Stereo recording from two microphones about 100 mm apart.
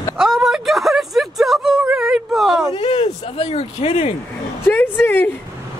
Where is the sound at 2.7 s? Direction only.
65° left (ahead or behind).